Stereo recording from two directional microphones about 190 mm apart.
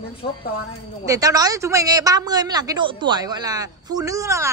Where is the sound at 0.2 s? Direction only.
30° left (ahead or behind).